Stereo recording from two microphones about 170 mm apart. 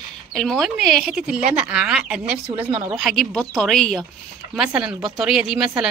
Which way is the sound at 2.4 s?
30° right (ahead or behind).